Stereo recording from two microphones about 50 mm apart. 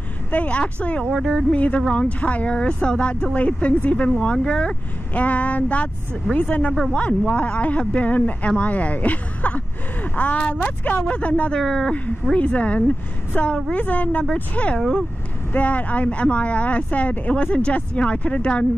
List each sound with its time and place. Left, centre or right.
0.3 s speech: left
1.1 s speech: centre
1.5 s speech: left
5.2 s speech: left
11.6 s speech: centre
12.4 s speech: left
14.8 s speech: centre
15.5 s speech: left